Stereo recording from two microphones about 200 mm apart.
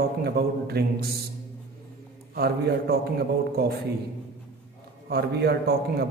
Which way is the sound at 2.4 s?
50° right (ahead or behind).